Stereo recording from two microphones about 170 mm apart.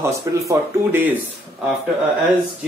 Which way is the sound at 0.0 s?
20° right (ahead or behind).